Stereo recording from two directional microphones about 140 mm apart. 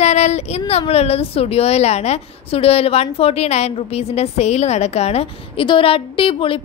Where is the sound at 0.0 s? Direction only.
55° left (ahead or behind).